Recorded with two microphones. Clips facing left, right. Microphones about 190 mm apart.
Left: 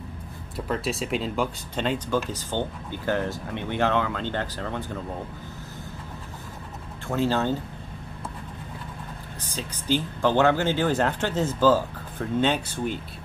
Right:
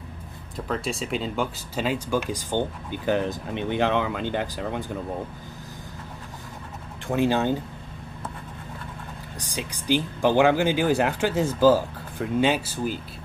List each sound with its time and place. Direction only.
0.7 s speech: centre (ahead or behind)
7.1 s speech: 15° right (ahead or behind)
9.4 s speech: 15° right (ahead or behind)